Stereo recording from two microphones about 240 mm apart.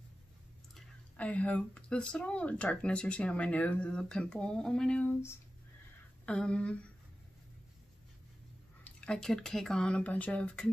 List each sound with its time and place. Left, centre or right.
0.7 s speech: centre
8.8 s speech: centre